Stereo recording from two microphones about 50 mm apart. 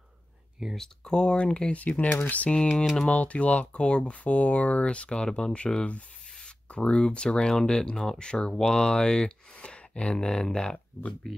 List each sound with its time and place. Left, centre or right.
0.7 s speech: centre
6.7 s speech: left